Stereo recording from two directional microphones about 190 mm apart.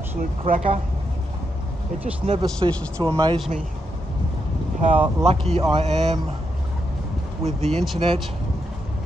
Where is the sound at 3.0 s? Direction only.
25° right (ahead or behind).